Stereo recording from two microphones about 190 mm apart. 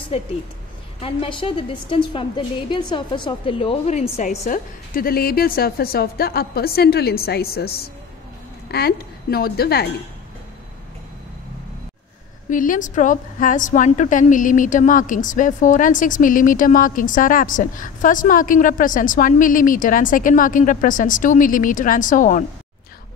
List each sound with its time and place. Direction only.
1.0 s a woman's voice: 25° left (ahead or behind)
4.5 s a woman's voice: 50° left (ahead or behind)
12.4 s a woman's voice: 45° left (ahead or behind)